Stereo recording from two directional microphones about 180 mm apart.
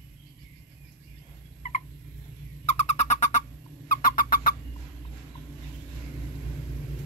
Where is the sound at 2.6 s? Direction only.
35° left (ahead or behind).